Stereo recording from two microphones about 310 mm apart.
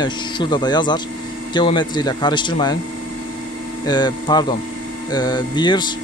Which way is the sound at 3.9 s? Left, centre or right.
Centre.